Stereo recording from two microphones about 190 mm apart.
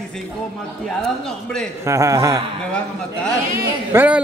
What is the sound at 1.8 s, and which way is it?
Speech, 15° right (ahead or behind).